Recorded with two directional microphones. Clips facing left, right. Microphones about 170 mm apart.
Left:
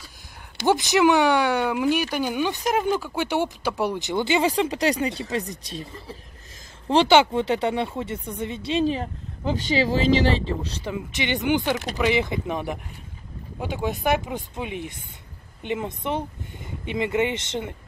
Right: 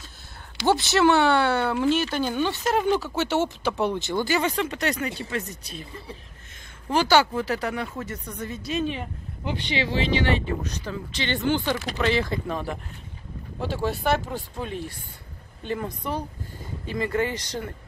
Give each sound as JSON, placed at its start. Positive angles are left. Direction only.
{"t": 0.7, "sound": "speech", "side_deg": 15}
{"t": 6.9, "sound": "speech", "side_deg": 25}
{"t": 10.9, "sound": "speech", "side_deg": 15}